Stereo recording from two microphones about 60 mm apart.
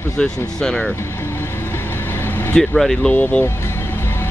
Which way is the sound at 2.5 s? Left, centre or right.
Centre.